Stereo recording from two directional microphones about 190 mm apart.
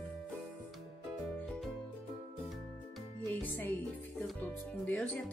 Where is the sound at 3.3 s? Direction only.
10° left (ahead or behind).